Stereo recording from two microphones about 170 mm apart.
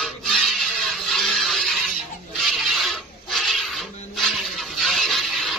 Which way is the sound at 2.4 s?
Centre (ahead or behind).